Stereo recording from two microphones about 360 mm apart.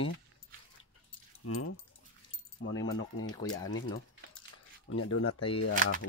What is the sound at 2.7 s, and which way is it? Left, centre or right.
Speech, left.